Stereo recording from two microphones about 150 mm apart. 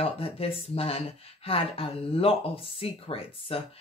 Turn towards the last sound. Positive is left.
turn(degrees=40)  # may be behind; listen again after turning